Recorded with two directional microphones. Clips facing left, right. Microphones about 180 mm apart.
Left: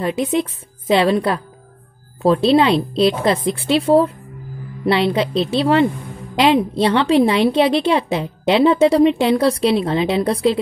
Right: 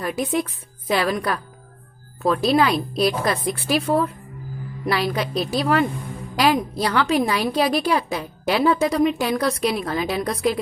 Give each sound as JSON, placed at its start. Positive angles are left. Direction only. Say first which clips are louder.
{"t": 0.0, "sound": "a woman's voice", "louder": "left 4 dB", "side_deg": 25}